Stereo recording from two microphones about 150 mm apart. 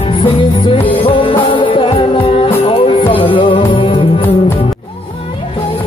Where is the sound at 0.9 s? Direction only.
35° left (ahead or behind).